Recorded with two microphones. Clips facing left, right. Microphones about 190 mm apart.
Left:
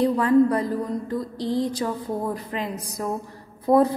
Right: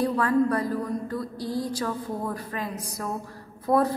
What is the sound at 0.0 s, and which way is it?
A woman's voice, 20° left (ahead or behind).